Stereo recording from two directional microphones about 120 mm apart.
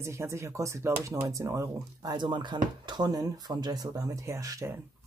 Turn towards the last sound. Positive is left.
turn(degrees=-30)  # may be behind; listen again after turning